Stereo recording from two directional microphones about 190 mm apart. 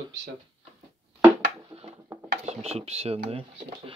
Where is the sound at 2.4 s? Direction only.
35° right (ahead or behind).